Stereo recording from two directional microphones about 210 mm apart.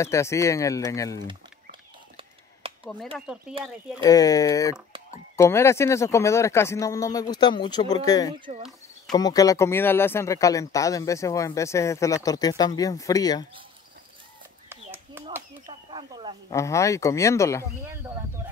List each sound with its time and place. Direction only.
0.0 s speech: 15° left (ahead or behind)
1.2 s a sound: 25° right (ahead or behind)
3.2 s speech: 5° right (ahead or behind)
4.0 s speech: 15° left (ahead or behind)
14.7 s a sound: 10° right (ahead or behind)
16.4 s speech: 15° left (ahead or behind)